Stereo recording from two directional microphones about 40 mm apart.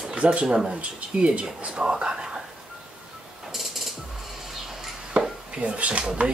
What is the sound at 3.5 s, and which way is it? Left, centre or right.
Mechanisms, centre.